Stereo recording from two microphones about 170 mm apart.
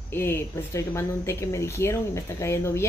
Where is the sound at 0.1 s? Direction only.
15° left (ahead or behind).